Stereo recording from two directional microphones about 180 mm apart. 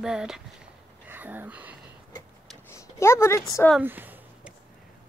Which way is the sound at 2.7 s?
15° left (ahead or behind).